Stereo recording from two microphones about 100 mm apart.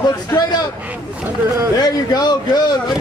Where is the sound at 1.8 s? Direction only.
45° left (ahead or behind).